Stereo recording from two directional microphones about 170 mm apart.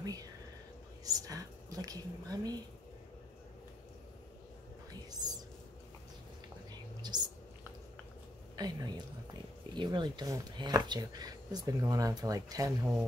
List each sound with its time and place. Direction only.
0.0 s speech: 20° right (ahead or behind)
6.7 s whispering: 25° right (ahead or behind)
8.5 s speech: 25° right (ahead or behind)